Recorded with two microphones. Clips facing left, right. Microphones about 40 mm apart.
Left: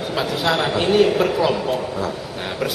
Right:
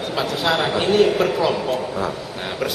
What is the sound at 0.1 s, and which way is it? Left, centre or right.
A man's voice, centre.